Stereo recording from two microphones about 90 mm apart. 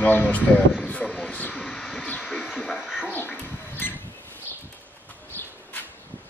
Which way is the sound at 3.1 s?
20° left (ahead or behind).